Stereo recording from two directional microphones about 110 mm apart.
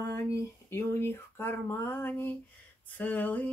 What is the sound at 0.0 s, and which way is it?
Speech, 30° left (ahead or behind).